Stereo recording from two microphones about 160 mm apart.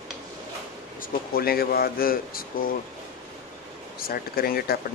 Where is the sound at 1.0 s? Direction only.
70° left (ahead or behind).